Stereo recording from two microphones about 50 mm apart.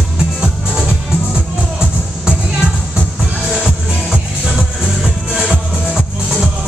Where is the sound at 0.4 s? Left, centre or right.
Centre.